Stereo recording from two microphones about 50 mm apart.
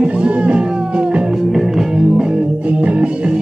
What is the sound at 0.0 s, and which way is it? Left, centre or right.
Music, right.